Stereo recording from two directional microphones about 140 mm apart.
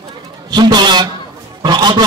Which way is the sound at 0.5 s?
30° right (ahead or behind).